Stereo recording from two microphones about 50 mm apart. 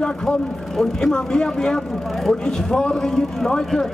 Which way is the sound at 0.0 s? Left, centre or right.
Left.